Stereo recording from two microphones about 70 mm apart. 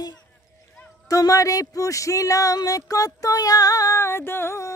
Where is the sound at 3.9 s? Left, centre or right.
Left.